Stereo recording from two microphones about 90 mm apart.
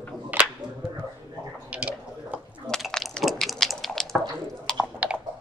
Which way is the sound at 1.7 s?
15° right (ahead or behind).